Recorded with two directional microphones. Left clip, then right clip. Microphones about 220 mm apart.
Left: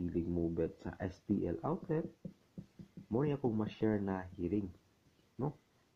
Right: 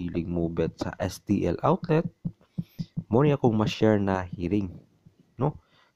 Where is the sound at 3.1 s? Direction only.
45° right (ahead or behind).